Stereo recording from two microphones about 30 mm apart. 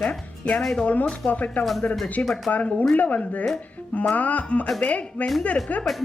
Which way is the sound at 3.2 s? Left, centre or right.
Left.